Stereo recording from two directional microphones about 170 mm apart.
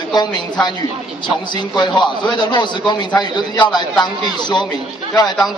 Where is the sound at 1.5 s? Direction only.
25° left (ahead or behind).